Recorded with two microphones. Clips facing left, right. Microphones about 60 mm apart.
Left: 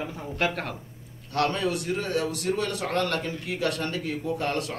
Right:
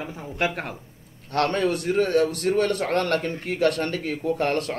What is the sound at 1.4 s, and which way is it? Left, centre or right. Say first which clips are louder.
A man's voice: right 3 dB; right.